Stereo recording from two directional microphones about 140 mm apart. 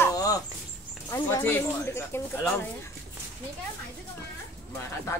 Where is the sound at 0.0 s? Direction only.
25° left (ahead or behind).